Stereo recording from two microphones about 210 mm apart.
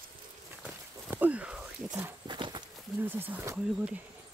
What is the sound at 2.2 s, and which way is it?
Horse, 20° right (ahead or behind).